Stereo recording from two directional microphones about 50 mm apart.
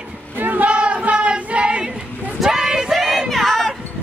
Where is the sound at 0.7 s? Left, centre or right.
Right.